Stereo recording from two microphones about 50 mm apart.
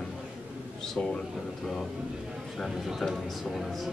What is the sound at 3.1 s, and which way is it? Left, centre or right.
Speech, centre.